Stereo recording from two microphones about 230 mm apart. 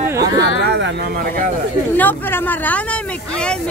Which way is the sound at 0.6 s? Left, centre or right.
Right.